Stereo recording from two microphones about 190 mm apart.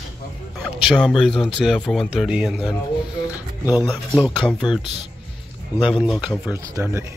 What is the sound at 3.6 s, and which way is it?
Speech, 20° left (ahead or behind).